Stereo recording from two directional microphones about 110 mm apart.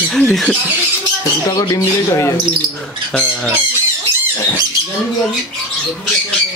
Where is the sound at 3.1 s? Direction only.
10° left (ahead or behind).